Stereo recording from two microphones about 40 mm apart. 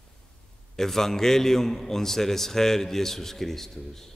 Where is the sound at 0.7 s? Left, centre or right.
Centre.